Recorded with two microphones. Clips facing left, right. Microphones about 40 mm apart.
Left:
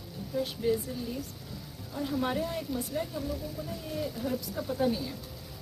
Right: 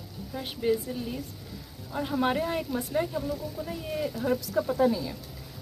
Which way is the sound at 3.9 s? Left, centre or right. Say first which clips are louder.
Right 5 dB; right.